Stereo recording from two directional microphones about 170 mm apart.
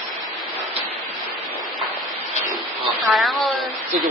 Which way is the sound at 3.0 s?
Centre (ahead or behind).